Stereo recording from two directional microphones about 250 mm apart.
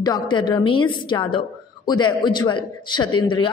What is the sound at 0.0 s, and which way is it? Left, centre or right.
A woman's voice, centre.